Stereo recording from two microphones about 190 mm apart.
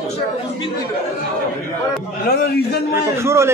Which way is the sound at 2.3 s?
55° left (ahead or behind).